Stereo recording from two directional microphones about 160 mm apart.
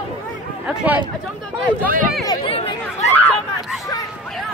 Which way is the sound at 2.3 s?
35° left (ahead or behind).